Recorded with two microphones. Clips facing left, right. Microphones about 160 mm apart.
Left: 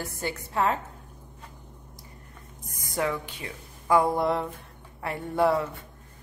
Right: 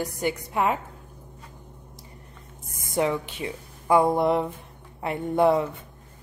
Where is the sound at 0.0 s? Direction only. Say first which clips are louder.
Right 6 dB; 15° right (ahead or behind).